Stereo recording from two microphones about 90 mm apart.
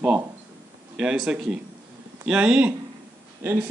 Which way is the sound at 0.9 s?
5° right (ahead or behind).